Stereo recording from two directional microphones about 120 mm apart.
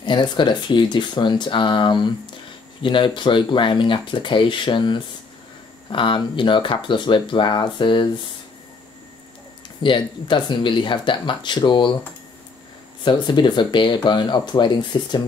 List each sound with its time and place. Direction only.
0.0 s speech: 40° left (ahead or behind)
9.8 s speech: 40° left (ahead or behind)
13.0 s speech: 40° left (ahead or behind)